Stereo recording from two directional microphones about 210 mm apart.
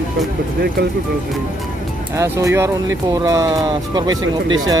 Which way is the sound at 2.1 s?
15° right (ahead or behind).